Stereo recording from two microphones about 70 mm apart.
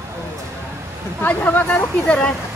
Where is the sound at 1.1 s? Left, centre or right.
Left.